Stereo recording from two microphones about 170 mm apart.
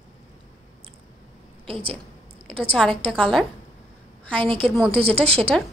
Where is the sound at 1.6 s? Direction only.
30° right (ahead or behind).